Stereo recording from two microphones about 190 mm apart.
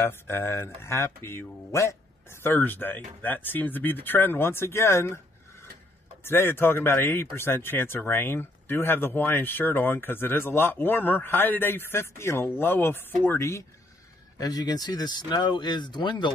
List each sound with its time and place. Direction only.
0.0 s speech: 10° left (ahead or behind)